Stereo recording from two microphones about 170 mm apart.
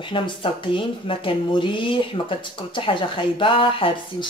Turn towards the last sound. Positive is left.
turn(degrees=30)  # may be behind; listen again after turning